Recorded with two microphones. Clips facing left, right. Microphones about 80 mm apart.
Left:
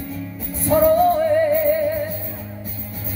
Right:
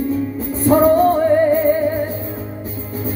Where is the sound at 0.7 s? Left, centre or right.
Right.